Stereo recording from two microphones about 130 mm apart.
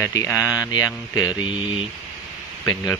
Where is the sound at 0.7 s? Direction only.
30° left (ahead or behind).